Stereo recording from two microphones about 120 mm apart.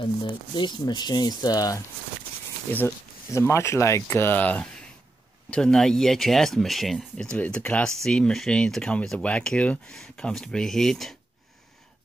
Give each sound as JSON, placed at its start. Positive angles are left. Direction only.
{"t": 0.0, "sound": "speech", "side_deg": 40}
{"t": 2.7, "sound": "speech", "side_deg": 20}